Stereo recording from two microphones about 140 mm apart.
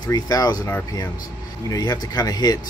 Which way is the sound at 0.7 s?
15° left (ahead or behind).